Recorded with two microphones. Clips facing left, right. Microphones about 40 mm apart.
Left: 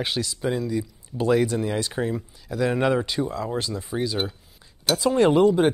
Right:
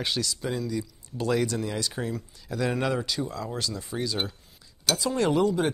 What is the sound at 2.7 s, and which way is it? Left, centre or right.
Speech, left.